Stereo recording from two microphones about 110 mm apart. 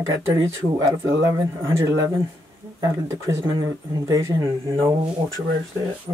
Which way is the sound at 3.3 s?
25° right (ahead or behind).